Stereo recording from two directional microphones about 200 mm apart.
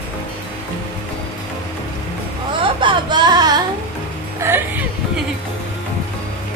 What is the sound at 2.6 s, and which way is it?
Speech, 25° right (ahead or behind).